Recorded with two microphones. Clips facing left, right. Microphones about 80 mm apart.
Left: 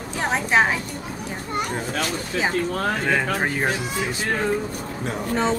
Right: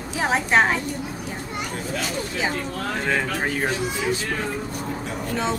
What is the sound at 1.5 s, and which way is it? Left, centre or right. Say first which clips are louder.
Speech: left 5 dB; left.